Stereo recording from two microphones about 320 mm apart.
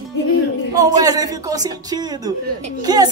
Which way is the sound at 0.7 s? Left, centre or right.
Centre.